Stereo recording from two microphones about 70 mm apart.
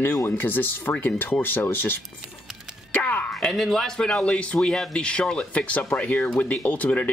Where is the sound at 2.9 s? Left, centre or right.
Left.